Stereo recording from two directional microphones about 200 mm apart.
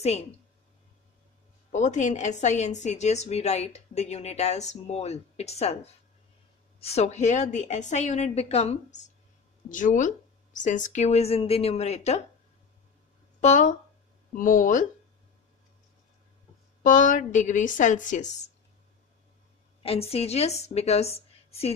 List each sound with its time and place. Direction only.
1.7 s a woman's voice: 35° left (ahead or behind)
6.8 s a woman's voice: 30° left (ahead or behind)
13.4 s a woman's voice: 40° left (ahead or behind)
16.8 s a woman's voice: 40° left (ahead or behind)
19.8 s a woman's voice: 30° left (ahead or behind)